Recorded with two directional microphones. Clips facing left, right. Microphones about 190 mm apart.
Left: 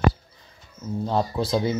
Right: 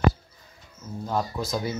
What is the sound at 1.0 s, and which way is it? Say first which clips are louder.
Speech: left 4 dB; 25° left (ahead or behind).